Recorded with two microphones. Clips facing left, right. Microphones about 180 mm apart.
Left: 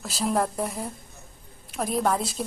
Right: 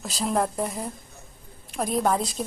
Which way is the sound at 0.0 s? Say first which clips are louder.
Even; centre (ahead or behind).